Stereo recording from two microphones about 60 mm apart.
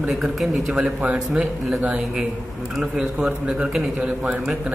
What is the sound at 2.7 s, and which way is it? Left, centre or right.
Speech, centre.